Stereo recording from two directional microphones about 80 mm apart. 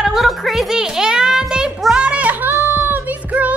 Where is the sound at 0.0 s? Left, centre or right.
Centre.